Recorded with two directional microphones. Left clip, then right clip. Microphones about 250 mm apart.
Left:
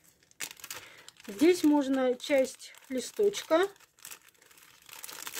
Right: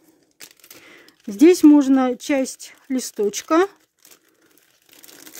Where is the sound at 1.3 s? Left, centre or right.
Right.